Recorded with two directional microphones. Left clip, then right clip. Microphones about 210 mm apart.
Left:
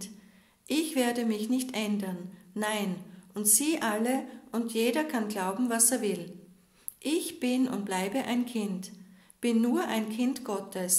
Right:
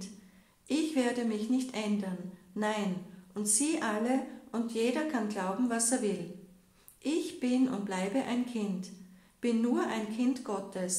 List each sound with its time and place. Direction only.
0.7 s a woman's voice: 40° left (ahead or behind)